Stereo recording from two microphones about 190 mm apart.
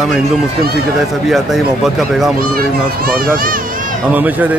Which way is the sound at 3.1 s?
50° right (ahead or behind).